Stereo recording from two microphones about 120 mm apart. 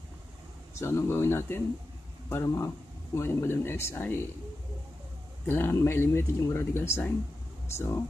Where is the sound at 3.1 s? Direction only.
20° left (ahead or behind).